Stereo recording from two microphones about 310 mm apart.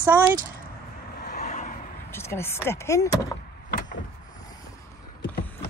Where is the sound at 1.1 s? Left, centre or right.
Left.